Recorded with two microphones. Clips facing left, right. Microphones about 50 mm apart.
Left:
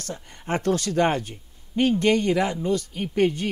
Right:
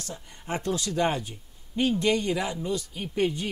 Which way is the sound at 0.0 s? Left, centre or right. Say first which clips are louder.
Left 5 dB; left.